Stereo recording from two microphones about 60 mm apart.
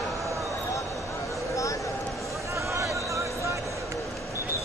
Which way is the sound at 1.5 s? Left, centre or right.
Left.